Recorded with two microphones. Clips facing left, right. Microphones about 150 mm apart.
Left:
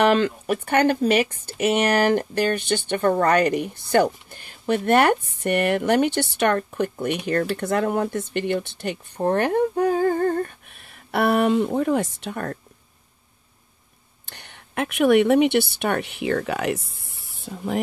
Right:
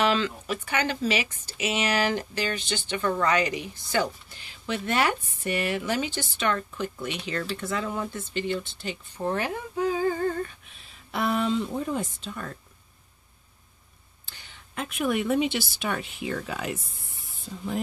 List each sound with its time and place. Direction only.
0.0 s speech: 55° left (ahead or behind)
14.2 s speech: 60° left (ahead or behind)